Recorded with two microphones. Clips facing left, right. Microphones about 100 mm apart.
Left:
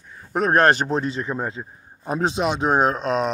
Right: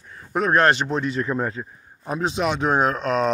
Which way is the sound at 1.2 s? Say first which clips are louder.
Right 2 dB; 20° left (ahead or behind).